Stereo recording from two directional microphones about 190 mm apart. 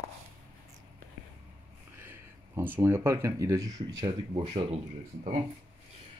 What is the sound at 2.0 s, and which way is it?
Speech, 10° right (ahead or behind).